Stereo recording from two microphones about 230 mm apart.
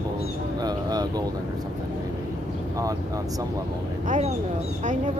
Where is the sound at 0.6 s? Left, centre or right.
Centre.